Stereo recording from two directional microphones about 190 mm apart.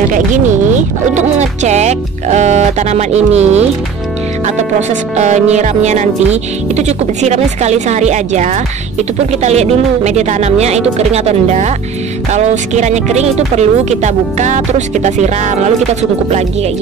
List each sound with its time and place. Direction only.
0.1 s speech: 40° right (ahead or behind)